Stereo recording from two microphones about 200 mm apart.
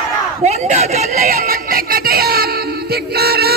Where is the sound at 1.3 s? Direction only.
45° right (ahead or behind).